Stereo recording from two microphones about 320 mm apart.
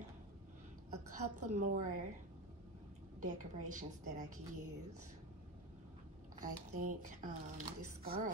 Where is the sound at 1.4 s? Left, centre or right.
Right.